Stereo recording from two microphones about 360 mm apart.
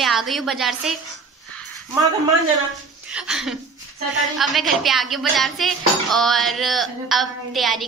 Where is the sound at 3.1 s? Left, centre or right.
Centre.